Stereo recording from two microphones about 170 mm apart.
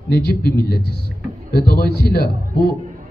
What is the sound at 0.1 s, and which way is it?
A man's voice, 70° left (ahead or behind).